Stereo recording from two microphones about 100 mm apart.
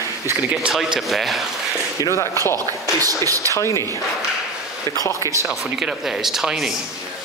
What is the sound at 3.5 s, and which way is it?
Speech, 30° left (ahead or behind).